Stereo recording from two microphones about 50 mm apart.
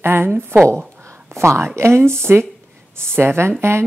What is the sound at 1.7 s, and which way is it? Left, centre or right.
Speech, right.